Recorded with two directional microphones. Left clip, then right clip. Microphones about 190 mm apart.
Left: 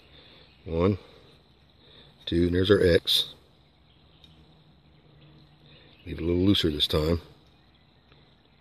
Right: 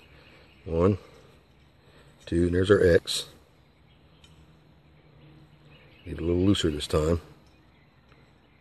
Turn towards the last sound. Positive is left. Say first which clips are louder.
# left 1 dB
turn(degrees=25)  # may be behind; listen again after turning